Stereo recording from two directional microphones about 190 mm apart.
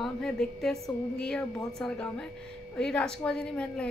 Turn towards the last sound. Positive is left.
turn(degrees=5)  # may be behind; listen again after turning